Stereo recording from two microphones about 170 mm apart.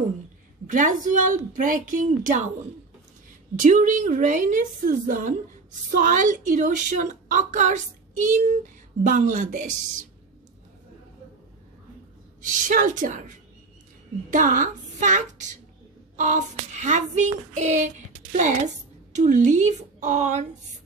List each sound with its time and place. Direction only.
0.7 s a woman's voice: 50° right (ahead or behind)
3.5 s a woman's voice: 50° right (ahead or behind)
12.4 s a woman's voice: 50° right (ahead or behind)
14.3 s a woman's voice: 50° right (ahead or behind)